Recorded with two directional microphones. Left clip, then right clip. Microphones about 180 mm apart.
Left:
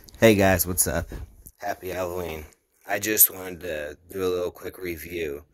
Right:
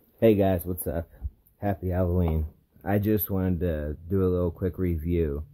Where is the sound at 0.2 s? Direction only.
15° left (ahead or behind).